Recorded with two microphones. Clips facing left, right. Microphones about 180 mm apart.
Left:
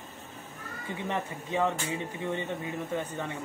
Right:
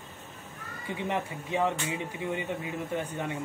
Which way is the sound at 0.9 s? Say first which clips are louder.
Right 2 dB; 15° right (ahead or behind).